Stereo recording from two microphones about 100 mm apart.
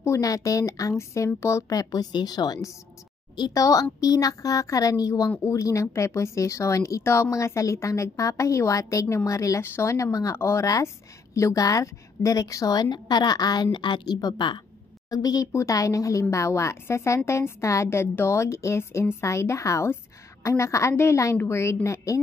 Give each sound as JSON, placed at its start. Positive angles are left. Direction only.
{"t": 0.0, "sound": "speech", "side_deg": 35}